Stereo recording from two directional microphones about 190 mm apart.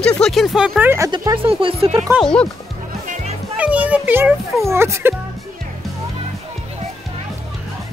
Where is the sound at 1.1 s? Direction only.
25° right (ahead or behind).